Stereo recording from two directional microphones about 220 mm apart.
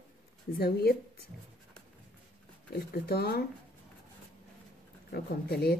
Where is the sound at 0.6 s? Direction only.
45° left (ahead or behind).